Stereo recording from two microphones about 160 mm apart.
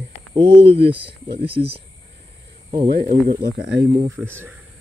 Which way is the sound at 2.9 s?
85° right.